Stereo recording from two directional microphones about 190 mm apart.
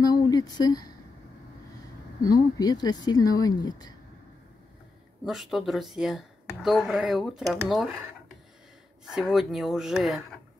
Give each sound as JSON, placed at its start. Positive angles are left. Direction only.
{"t": 0.0, "sound": "a sound", "side_deg": 20}
{"t": 2.2, "sound": "speech", "side_deg": 20}
{"t": 5.2, "sound": "speech", "side_deg": 0}
{"t": 9.0, "sound": "speech", "side_deg": 0}